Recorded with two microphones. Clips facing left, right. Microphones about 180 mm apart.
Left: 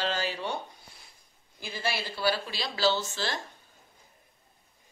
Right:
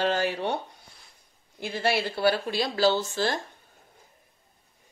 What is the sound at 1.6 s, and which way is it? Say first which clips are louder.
Speech: right 7 dB; 60° right (ahead or behind).